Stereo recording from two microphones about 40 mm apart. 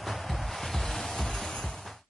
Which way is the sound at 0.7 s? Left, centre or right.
Centre.